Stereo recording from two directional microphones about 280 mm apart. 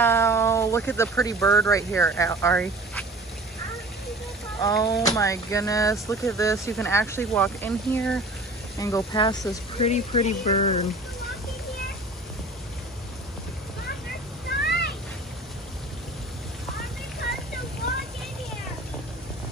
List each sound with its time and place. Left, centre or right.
0.0 s speech: centre
4.6 s speech: centre
14.5 s cat: left